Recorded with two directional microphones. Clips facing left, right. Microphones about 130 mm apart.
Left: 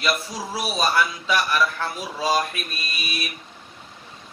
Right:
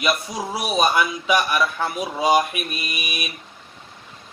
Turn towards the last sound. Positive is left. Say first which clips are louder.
# right 1 dB
turn(degrees=-15)  # may be behind; listen again after turning